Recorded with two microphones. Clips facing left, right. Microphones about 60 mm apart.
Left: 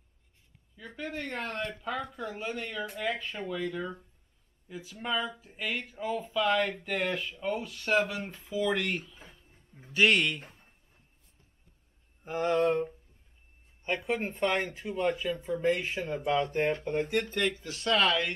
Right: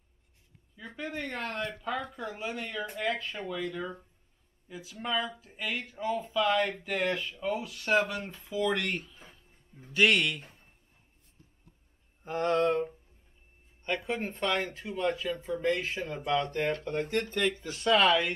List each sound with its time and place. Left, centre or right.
0.7 s speech: centre
12.3 s speech: centre
13.8 s speech: centre
15.2 s speech: centre
15.7 s speech: centre
17.3 s speech: centre